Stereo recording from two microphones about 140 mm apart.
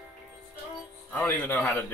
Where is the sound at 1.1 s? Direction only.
10° left (ahead or behind).